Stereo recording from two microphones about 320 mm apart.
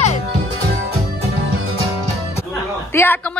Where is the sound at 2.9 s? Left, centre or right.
Centre.